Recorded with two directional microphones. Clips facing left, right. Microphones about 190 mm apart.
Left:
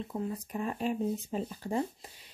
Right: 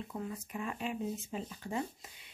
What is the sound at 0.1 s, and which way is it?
Speech, 35° left (ahead or behind).